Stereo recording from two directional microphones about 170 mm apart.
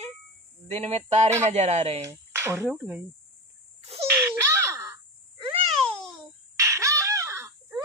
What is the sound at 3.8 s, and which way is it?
Baby laughter, 35° right (ahead or behind).